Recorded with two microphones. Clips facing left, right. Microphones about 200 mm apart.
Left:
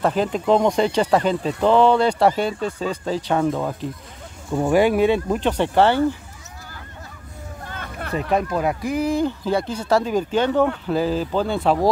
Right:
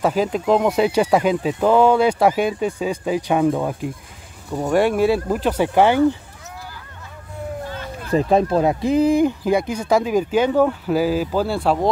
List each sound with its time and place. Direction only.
0.0 s speech: 5° right (ahead or behind)
4.5 s speech: 5° left (ahead or behind); by 6.0 s 10° right (ahead or behind)
7.7 s hubbub: 55° left (ahead or behind)
8.1 s speech: 30° right (ahead or behind); by 11.9 s centre (ahead or behind)